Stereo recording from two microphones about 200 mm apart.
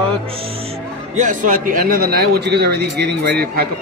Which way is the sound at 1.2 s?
40° right (ahead or behind).